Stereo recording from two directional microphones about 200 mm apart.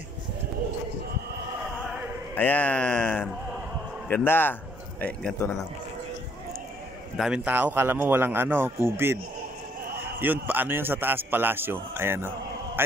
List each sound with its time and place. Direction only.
2.3 s speech: 10° left (ahead or behind)
7.2 s a man's voice: 5° right (ahead or behind)
10.2 s a man's voice: 10° right (ahead or behind)